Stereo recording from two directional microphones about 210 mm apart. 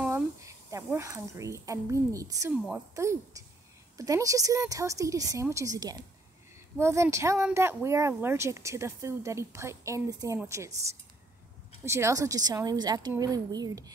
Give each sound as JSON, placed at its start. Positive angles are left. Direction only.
{"t": 0.1, "sound": "speech", "side_deg": -15}
{"t": 11.8, "sound": "speech", "side_deg": -15}